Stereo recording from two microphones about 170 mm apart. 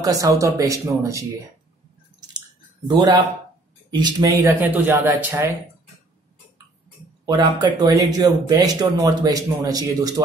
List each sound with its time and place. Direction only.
0.0 s speech: 20° right (ahead or behind)
2.9 s a man's voice: 25° right (ahead or behind)
7.2 s speech: 25° right (ahead or behind)